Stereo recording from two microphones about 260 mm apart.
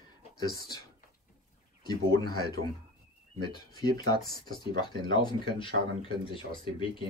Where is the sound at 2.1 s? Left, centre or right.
Centre.